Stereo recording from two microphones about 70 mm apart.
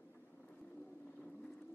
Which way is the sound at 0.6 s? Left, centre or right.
Left.